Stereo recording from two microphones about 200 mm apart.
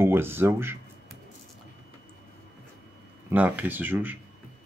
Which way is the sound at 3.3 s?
10° right (ahead or behind).